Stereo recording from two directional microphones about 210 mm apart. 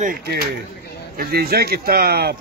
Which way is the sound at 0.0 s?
45° right (ahead or behind).